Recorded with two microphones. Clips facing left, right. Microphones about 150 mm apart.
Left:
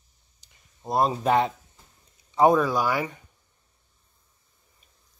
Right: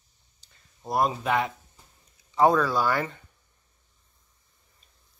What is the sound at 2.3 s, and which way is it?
Speech, 20° left (ahead or behind).